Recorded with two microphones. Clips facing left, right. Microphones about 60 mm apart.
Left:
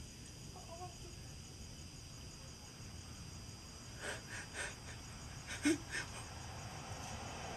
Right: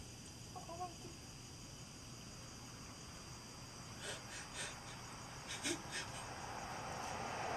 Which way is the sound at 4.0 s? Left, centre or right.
Left.